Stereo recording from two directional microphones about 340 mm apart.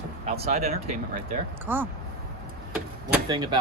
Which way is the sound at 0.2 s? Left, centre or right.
Centre.